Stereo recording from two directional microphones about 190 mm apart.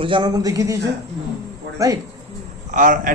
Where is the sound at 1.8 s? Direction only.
15° right (ahead or behind).